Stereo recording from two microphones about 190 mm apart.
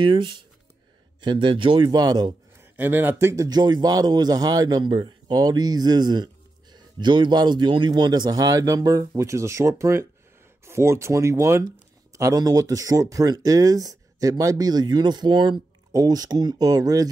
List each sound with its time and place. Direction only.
0.0 s a man's voice: 25° right (ahead or behind)
2.7 s speech: 10° right (ahead or behind)